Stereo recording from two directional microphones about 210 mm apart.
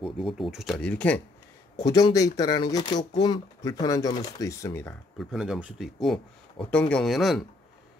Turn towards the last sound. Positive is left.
turn(degrees=0)  # may be behind; listen again after turning